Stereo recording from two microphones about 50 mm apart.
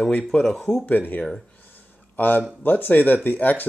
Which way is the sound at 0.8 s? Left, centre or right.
Left.